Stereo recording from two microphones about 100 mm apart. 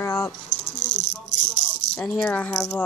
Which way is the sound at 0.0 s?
25° left (ahead or behind).